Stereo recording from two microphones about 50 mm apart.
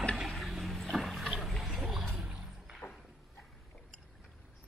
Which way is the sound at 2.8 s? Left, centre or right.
Left.